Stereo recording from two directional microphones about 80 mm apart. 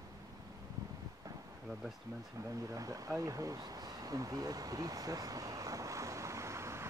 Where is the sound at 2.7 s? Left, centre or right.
Right.